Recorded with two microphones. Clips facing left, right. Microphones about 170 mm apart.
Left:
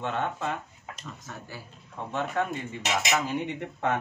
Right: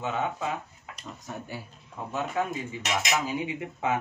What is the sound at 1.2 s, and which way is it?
Speech, 15° right (ahead or behind).